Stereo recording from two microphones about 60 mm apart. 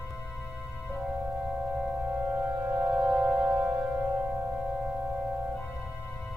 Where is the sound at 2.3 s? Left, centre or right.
Right.